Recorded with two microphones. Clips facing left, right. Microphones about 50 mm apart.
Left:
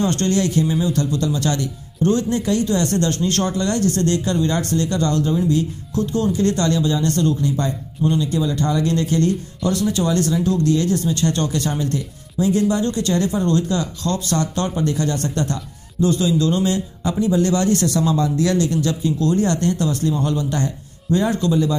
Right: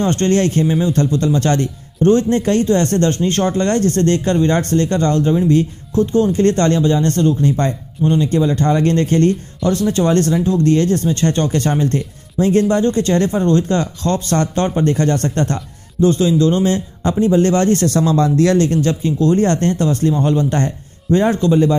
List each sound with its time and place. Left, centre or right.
0.0 s speech: right
8.0 s a man's voice: right